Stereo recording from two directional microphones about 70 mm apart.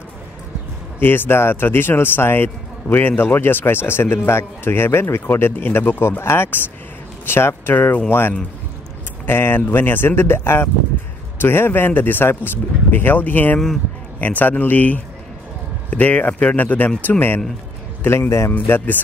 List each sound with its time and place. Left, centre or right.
0.9 s speech: left
18.5 s speech: left